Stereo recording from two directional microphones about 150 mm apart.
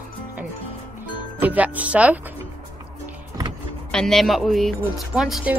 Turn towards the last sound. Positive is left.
turn(degrees=0)  # may be behind; listen again after turning